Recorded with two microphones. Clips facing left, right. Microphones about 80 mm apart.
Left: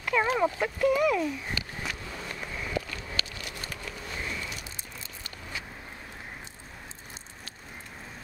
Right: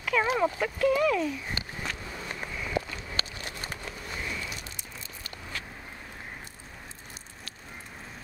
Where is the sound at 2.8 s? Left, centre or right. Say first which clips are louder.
Right 3 dB; right.